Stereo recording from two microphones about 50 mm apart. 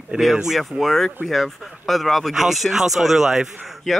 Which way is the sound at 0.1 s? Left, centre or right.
Centre.